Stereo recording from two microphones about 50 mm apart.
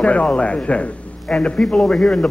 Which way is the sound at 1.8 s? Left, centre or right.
Left.